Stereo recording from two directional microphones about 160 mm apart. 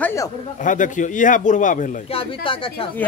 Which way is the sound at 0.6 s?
55° left (ahead or behind).